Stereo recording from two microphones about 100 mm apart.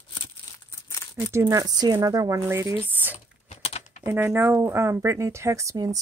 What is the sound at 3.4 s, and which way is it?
Typing, 90° left.